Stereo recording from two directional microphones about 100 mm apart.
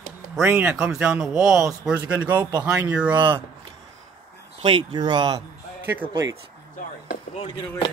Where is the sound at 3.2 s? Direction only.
55° right (ahead or behind).